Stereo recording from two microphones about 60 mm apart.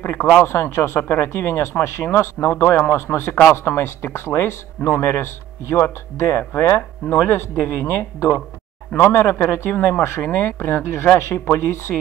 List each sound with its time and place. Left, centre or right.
0.0 s speech: left
6.5 s speech: left